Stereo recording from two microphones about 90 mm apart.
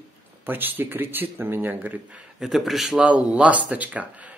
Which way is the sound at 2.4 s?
Centre (ahead or behind).